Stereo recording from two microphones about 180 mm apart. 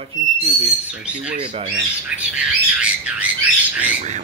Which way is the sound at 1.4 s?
30° right (ahead or behind).